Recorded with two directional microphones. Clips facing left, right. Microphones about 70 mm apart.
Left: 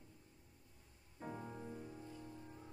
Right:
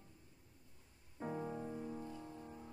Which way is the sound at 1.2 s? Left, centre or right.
Centre.